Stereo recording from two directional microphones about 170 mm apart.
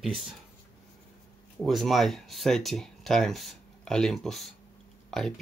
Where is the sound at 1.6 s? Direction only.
Centre (ahead or behind).